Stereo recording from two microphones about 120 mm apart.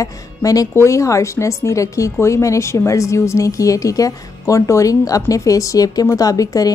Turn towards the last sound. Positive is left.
turn(degrees=30)  # may be behind; listen again after turning